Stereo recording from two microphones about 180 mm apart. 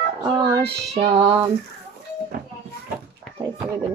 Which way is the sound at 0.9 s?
35° right (ahead or behind).